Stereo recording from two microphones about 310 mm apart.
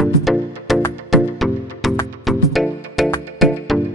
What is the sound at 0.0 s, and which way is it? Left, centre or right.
Music, centre.